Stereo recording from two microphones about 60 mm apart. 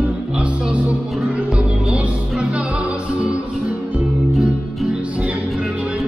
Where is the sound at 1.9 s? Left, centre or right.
Right.